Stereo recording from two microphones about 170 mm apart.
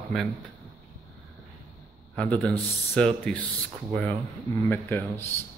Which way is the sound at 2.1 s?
5° left (ahead or behind).